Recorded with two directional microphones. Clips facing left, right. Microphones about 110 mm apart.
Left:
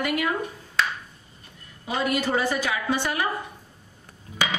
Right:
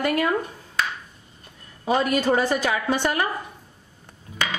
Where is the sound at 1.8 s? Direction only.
45° right (ahead or behind).